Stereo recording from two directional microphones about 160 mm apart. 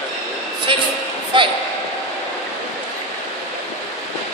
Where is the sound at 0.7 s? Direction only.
35° right (ahead or behind).